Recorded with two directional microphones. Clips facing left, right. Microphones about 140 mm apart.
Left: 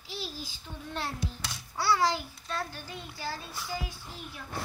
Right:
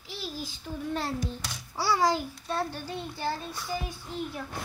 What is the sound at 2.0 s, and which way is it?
Speech, 45° right (ahead or behind).